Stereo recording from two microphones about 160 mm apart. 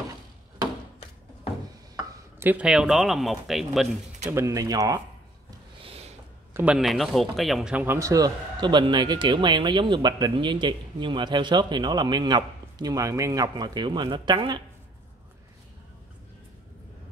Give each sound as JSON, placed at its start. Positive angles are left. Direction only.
{"t": 2.5, "sound": "speech", "side_deg": -5}
{"t": 4.3, "sound": "speech", "side_deg": -20}
{"t": 5.9, "sound": "a sound", "side_deg": -40}
{"t": 6.5, "sound": "speech", "side_deg": -5}